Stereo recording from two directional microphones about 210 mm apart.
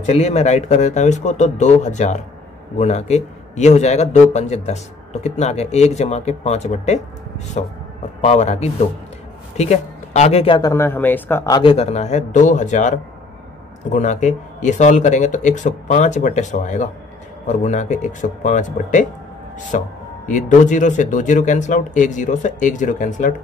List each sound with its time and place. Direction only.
0.0 s a man's voice: 30° left (ahead or behind)
11.7 s a man's voice: 30° left (ahead or behind)
13.9 s a man's voice: 35° left (ahead or behind)